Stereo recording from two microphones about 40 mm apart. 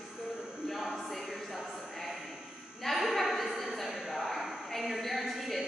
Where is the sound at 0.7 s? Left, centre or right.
Centre.